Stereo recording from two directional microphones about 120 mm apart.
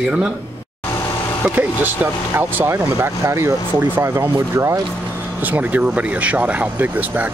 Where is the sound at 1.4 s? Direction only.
15° right (ahead or behind).